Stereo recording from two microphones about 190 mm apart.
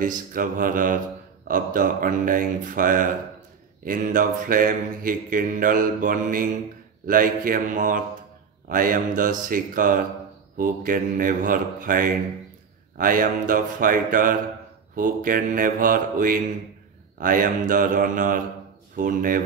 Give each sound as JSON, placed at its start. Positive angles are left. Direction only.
{"t": 0.0, "sound": "mantra", "side_deg": -45}